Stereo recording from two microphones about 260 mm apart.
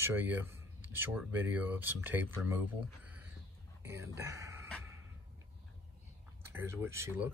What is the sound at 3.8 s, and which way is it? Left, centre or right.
Speech, centre.